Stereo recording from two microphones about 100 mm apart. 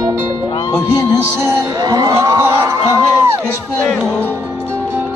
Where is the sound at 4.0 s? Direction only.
15° right (ahead or behind).